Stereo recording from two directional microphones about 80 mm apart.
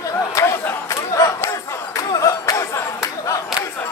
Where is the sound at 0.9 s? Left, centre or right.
Left.